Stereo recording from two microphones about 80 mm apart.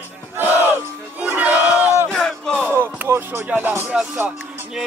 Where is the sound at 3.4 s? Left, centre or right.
Right.